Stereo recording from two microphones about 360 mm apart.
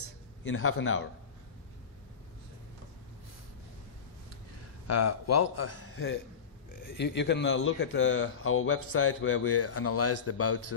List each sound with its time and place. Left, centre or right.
0.4 s a man's voice: left
4.8 s a man's voice: left